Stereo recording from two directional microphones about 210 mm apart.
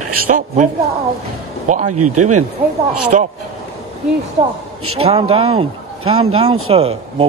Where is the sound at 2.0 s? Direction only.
90° right.